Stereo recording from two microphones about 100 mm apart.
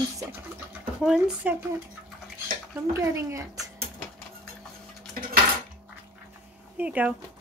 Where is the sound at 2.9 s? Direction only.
30° right (ahead or behind).